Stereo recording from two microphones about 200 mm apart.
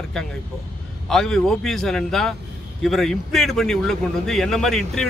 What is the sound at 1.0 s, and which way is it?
Speech, centre (ahead or behind).